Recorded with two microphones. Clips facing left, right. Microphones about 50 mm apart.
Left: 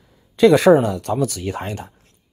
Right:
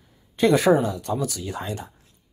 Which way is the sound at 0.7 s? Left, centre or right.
Left.